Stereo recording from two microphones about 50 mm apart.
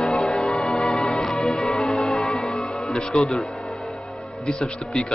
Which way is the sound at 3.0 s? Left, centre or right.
Centre.